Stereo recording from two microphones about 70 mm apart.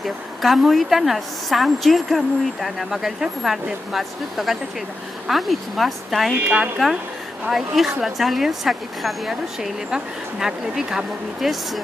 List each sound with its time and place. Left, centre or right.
0.0 s a woman's voice: centre
6.4 s speech: centre
7.4 s a woman's voice: centre